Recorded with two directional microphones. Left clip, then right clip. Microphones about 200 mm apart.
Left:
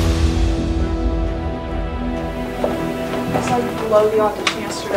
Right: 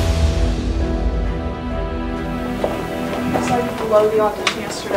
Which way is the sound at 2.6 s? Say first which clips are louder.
Left 2 dB; centre (ahead or behind).